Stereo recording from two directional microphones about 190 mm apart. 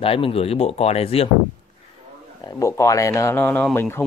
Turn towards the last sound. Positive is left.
turn(degrees=10)  # may be behind; listen again after turning